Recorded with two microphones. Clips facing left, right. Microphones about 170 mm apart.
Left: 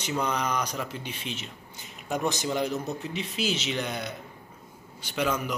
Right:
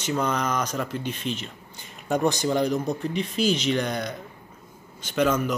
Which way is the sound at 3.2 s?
45° right (ahead or behind).